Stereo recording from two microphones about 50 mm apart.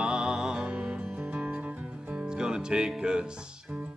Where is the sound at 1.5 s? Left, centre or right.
Right.